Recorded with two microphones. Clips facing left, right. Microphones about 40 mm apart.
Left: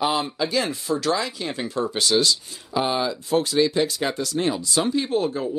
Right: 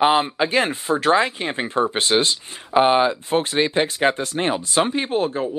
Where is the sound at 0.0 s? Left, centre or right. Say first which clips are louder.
Right 6 dB; right.